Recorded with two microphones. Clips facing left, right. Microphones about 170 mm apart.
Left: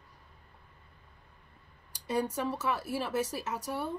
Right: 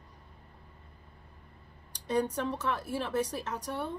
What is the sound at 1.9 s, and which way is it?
Speech, 5° left (ahead or behind).